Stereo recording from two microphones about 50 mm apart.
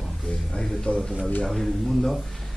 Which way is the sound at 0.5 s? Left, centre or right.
Centre.